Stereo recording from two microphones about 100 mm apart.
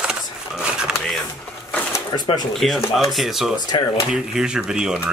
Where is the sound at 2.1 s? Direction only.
45° left (ahead or behind).